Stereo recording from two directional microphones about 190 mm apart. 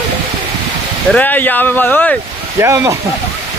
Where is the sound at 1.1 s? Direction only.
10° left (ahead or behind).